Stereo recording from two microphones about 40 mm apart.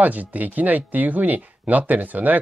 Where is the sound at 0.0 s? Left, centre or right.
Right.